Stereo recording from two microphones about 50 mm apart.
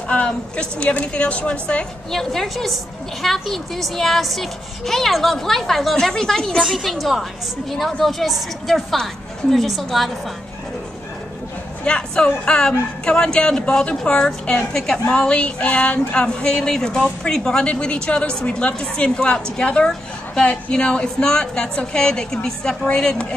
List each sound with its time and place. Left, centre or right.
0.1 s a woman's voice: left
2.0 s a woman's voice: centre
11.8 s a woman's voice: centre